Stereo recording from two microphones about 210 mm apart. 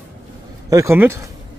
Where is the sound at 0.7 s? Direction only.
10° right (ahead or behind).